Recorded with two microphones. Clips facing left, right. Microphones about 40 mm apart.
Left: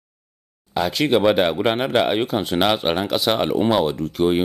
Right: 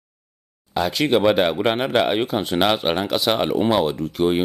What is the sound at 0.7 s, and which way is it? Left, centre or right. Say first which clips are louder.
Speech: even; centre.